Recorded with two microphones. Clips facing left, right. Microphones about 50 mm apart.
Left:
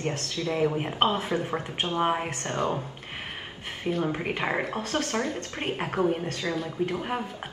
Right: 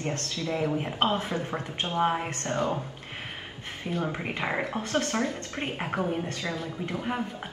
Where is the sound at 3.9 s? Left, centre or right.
Centre.